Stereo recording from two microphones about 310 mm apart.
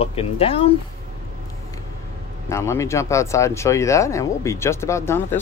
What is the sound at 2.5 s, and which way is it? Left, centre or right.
Speech, centre.